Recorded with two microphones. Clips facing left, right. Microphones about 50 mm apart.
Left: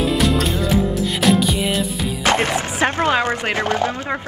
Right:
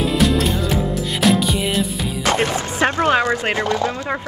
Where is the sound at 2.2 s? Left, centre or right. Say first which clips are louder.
Left 1 dB; left.